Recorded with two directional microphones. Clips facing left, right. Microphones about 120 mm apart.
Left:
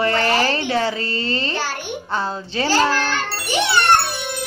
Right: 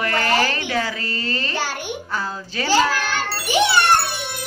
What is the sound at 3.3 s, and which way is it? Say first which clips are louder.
Jingle: right 2 dB; centre (ahead or behind).